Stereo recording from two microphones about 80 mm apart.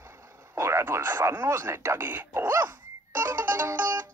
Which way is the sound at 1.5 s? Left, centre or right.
Right.